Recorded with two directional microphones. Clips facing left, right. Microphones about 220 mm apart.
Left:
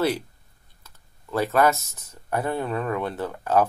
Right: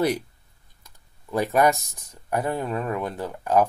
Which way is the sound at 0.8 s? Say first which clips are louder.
Even; 15° right (ahead or behind).